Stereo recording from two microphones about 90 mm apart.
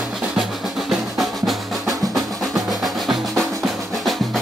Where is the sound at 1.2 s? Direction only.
Centre (ahead or behind).